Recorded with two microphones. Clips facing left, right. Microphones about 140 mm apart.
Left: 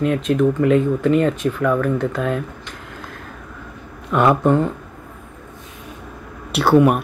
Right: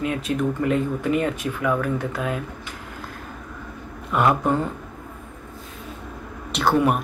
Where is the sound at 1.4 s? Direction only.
50° left (ahead or behind).